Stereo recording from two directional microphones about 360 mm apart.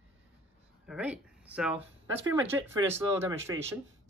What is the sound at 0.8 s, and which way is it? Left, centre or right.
Speech, centre.